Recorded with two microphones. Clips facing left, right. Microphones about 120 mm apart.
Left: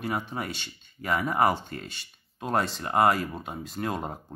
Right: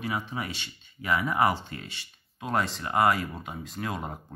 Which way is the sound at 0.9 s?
45° left (ahead or behind).